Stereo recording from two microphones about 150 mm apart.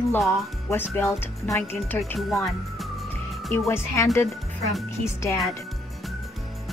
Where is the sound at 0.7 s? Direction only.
15° left (ahead or behind).